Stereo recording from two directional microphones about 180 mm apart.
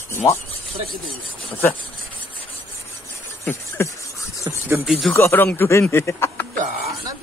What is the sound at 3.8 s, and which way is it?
Speech, 10° left (ahead or behind).